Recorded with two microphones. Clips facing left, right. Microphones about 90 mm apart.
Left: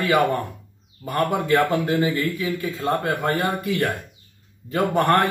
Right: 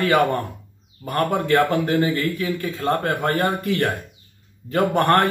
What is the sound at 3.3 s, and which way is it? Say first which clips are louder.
Speech: right 3 dB; centre (ahead or behind).